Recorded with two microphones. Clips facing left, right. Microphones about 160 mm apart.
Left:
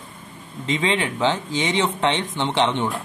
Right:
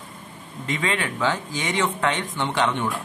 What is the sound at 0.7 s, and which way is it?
Speech, 25° left (ahead or behind).